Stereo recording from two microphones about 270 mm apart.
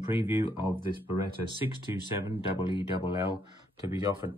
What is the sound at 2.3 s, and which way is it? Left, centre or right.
Speech, centre.